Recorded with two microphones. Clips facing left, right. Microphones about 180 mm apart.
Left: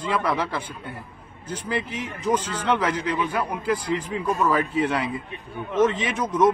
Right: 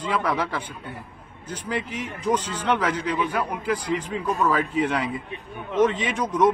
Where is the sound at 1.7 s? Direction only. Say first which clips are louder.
Even; 10° right (ahead or behind).